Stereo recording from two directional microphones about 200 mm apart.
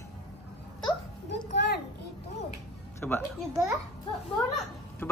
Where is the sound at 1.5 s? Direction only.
55° left (ahead or behind).